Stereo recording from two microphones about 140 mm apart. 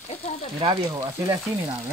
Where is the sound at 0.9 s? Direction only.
20° right (ahead or behind).